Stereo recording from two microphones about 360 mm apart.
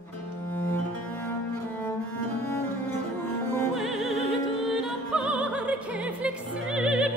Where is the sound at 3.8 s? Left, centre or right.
Centre.